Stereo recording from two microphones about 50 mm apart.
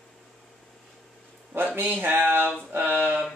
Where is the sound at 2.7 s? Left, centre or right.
Right.